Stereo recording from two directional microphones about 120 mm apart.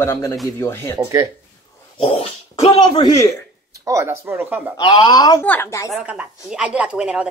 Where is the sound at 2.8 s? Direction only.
40° left (ahead or behind).